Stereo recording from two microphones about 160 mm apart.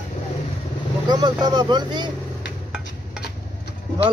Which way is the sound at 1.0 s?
25° right (ahead or behind).